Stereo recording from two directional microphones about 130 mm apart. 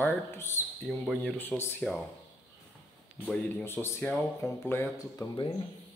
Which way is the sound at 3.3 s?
10° left (ahead or behind).